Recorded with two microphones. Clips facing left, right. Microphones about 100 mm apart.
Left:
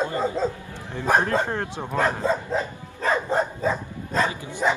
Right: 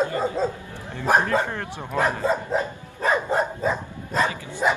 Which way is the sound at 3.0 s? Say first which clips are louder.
Right 1 dB; 15° right (ahead or behind).